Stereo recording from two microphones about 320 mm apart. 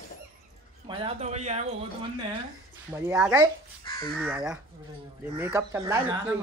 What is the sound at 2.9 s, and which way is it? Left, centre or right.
Speech, centre.